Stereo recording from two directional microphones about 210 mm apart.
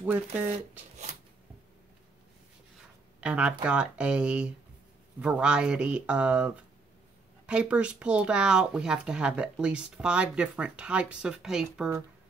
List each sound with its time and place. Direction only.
1.1 s zipper: 35° right (ahead or behind)
3.2 s speech: 5° right (ahead or behind)